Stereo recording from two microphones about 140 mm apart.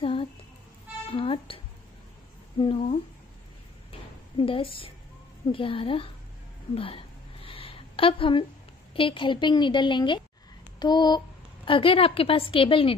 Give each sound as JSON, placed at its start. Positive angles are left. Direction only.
{"t": 0.0, "sound": "music", "side_deg": 40}
{"t": 1.1, "sound": "speech", "side_deg": 40}
{"t": 2.6, "sound": "a woman's voice", "side_deg": 40}
{"t": 4.4, "sound": "a woman's voice", "side_deg": 40}
{"t": 6.7, "sound": "a sound", "side_deg": 40}
{"t": 8.9, "sound": "a woman's voice", "side_deg": 40}